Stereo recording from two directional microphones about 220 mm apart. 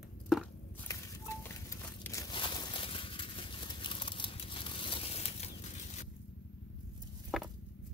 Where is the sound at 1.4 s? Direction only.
10° left (ahead or behind); by 5.5 s 30° left (ahead or behind).